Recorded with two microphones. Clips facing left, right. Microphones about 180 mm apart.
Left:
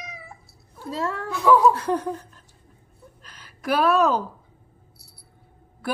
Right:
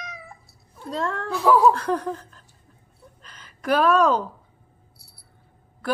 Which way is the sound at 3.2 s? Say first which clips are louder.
Right 1 dB; 5° left (ahead or behind).